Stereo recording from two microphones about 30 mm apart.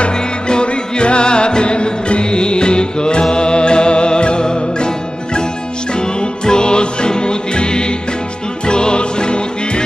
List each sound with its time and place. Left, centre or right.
0.5 s music: left